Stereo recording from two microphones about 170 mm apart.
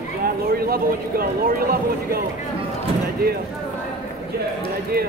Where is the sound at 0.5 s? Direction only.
60° right (ahead or behind).